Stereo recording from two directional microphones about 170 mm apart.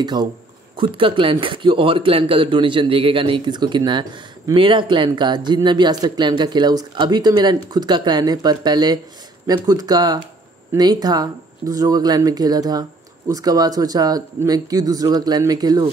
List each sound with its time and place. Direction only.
0.0 s a man's voice: 25° right (ahead or behind)